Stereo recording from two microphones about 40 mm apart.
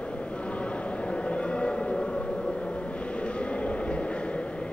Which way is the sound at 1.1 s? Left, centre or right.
Left.